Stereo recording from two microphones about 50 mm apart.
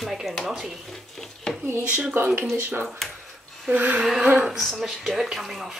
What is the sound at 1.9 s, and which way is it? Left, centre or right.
Speech, right.